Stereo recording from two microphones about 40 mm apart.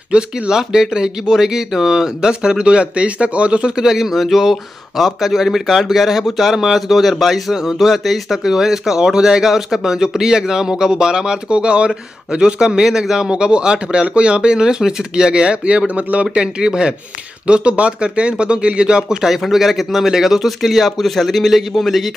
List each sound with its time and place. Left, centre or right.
0.1 s speech: centre
2.4 s speech: right
3.7 s speech: centre
19.2 s speech: centre